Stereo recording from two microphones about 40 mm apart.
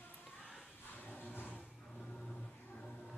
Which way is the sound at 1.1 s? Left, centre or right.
Left.